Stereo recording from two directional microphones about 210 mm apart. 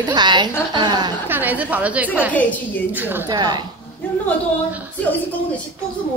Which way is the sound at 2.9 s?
10° right (ahead or behind).